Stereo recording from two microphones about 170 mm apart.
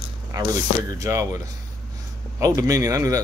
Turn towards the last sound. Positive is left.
turn(degrees=-20)  # may be behind; listen again after turning